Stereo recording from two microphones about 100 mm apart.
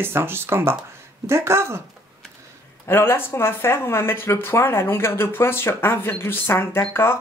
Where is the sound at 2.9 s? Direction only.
25° left (ahead or behind).